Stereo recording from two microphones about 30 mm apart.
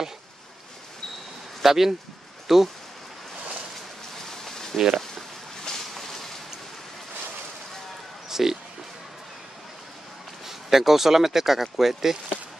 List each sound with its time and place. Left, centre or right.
1.6 s speech: centre
4.3 s a sound: centre
4.7 s speech: centre
5.6 s boat: centre
8.3 s music: centre
10.4 s speech: centre